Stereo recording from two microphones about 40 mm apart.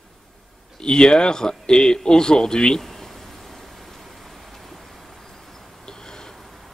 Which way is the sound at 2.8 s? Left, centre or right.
Centre.